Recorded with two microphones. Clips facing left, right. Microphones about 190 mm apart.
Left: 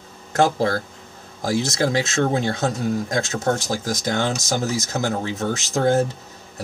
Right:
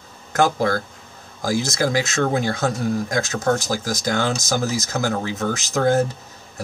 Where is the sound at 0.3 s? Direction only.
30° left (ahead or behind).